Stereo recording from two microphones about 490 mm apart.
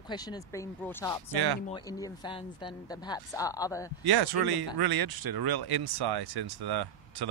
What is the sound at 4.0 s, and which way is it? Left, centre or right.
Speech, right.